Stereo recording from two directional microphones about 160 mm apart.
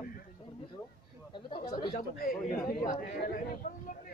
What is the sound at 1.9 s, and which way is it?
Speech, 65° left (ahead or behind).